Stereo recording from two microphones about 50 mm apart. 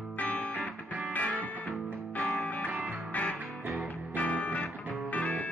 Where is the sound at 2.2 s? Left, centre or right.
Centre.